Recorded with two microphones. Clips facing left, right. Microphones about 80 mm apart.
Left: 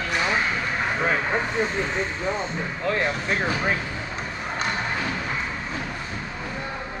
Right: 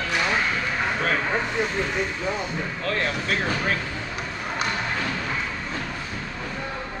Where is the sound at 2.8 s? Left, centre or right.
Centre.